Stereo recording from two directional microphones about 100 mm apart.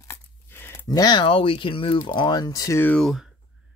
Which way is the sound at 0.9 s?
40° left (ahead or behind).